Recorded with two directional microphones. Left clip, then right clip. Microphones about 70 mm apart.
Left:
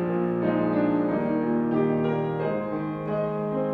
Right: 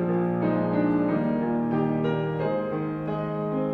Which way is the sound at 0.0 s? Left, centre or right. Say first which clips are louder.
Even; right.